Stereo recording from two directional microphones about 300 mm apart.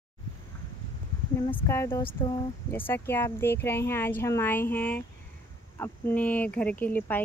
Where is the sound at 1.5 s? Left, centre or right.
Centre.